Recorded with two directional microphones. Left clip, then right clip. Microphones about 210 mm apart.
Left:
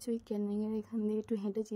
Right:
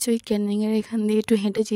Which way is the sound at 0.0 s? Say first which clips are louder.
Right 13 dB; 40° right (ahead or behind).